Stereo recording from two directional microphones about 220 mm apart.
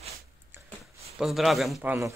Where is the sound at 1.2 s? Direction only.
Centre (ahead or behind).